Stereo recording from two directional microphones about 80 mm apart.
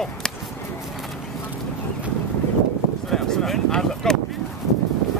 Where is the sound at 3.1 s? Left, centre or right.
Centre.